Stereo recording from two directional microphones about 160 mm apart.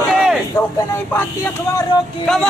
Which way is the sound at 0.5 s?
15° left (ahead or behind).